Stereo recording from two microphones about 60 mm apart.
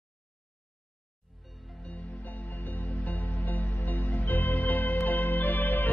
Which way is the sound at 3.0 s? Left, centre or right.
Left.